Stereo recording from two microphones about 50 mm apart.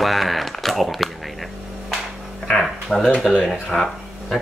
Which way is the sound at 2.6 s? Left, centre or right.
Centre.